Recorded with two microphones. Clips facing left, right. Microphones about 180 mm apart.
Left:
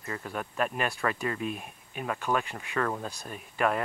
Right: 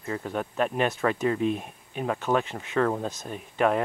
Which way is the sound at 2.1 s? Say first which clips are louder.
Right 4 dB; 15° right (ahead or behind).